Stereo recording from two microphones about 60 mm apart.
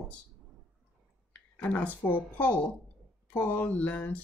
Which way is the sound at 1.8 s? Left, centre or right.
Left.